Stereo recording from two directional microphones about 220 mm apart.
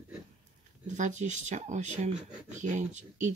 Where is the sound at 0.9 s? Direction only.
35° right (ahead or behind).